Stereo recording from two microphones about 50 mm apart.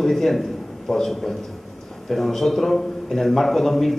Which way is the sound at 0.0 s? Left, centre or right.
Centre.